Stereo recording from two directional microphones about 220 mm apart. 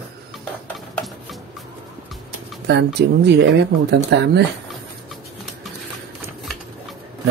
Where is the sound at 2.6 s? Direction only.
50° right (ahead or behind).